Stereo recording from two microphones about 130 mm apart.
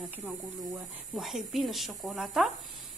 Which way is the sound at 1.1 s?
Centre (ahead or behind).